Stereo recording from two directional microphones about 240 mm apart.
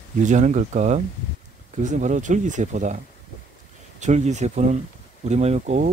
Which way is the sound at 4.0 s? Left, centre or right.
Right.